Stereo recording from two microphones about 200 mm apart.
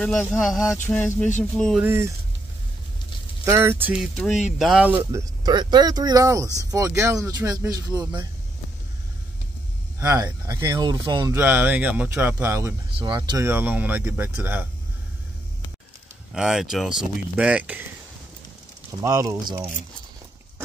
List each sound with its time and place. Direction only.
0.0 s speech: 5° left (ahead or behind)
1.8 s speech: 10° right (ahead or behind)
3.4 s speech: 10° right (ahead or behind)
9.9 s speech: 15° right (ahead or behind)
16.3 s speech: centre (ahead or behind)
18.9 s speech: 15° right (ahead or behind)